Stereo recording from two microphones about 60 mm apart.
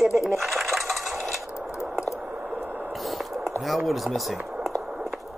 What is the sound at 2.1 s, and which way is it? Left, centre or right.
Squish, right.